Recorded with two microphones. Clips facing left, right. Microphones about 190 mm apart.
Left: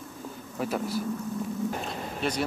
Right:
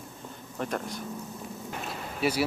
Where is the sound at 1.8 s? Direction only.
5° right (ahead or behind).